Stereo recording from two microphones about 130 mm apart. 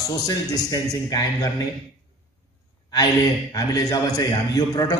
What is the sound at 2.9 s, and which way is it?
A man's voice, 30° left (ahead or behind).